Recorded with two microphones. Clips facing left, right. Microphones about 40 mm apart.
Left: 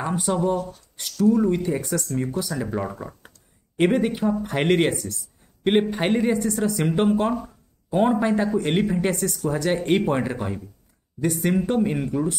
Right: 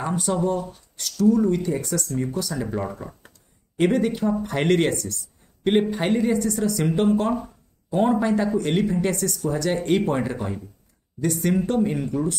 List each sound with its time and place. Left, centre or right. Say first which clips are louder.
0.0 s speech: even; centre
2.0 s speech: even; centre
3.7 s speech: even; centre